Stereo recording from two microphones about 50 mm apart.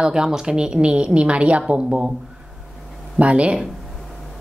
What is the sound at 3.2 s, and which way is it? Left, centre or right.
Speech, right.